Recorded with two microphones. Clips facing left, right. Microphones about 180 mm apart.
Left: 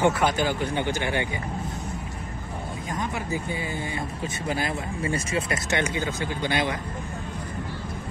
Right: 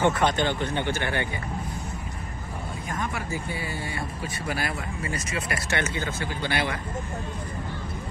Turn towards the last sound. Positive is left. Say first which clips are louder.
# left 2 dB
turn(degrees=20)  # may be behind; listen again after turning